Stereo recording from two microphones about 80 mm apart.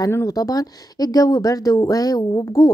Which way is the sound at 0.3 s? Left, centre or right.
Left.